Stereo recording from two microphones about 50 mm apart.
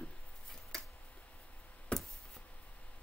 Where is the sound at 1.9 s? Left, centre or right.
Centre.